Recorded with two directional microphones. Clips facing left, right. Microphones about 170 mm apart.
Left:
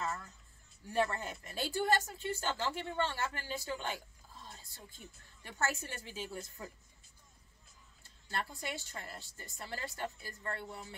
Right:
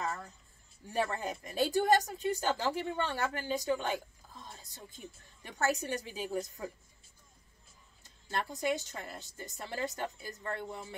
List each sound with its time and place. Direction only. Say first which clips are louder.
0.9 s speech: right 1 dB; 15° right (ahead or behind)
8.3 s a woman's voice: right 7 dB; 20° right (ahead or behind)